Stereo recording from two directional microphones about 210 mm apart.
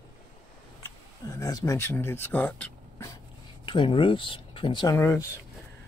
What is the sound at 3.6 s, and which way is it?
Speech, 25° left (ahead or behind).